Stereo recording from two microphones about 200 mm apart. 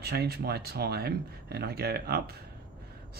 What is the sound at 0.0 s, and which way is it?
Speech, 55° right (ahead or behind).